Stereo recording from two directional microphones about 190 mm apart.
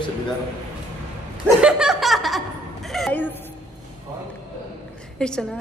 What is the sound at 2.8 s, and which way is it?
Speech, centre (ahead or behind).